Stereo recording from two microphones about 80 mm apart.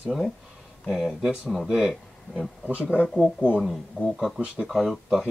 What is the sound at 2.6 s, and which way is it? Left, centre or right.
Speech, centre.